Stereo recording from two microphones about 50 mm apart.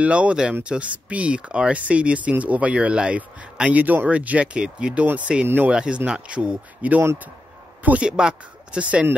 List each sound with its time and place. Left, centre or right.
0.0 s speech: right
4.6 s speech: centre
5.0 s speech: right
5.7 s speech: right
8.0 s speech: right